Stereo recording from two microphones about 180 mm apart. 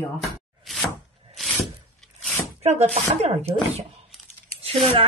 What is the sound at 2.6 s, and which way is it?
Speech, 35° right (ahead or behind).